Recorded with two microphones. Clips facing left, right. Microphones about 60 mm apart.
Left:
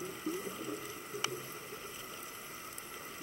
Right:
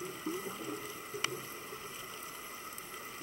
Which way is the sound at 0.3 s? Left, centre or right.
Right.